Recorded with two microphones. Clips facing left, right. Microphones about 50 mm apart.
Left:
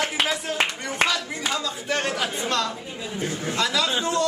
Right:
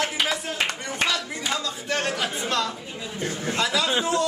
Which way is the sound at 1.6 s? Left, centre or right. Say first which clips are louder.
Left 1 dB; centre.